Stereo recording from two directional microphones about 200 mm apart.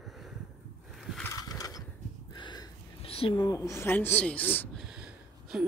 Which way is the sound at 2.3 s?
20° left (ahead or behind).